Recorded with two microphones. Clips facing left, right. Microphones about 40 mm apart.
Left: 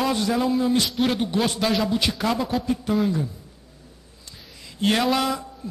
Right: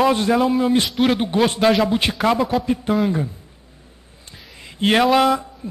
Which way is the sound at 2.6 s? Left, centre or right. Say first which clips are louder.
Right 4 dB; right.